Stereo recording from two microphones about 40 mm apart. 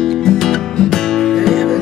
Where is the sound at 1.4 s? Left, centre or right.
Centre.